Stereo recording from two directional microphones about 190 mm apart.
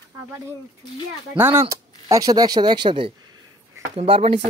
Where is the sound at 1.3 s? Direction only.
10° right (ahead or behind).